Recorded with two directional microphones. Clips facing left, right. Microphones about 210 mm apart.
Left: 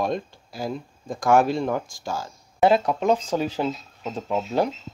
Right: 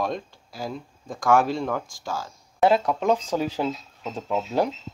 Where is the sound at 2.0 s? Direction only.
25° left (ahead or behind).